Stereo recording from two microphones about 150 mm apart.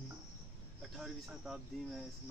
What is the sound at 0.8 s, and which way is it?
Speech, centre (ahead or behind).